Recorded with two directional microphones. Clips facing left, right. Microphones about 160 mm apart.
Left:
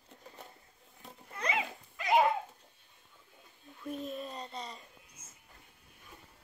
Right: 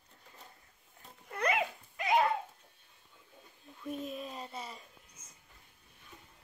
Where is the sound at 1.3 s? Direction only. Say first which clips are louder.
Right 3 dB; 55° right (ahead or behind).